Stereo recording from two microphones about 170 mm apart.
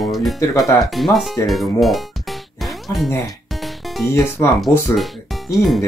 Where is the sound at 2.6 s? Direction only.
Centre (ahead or behind).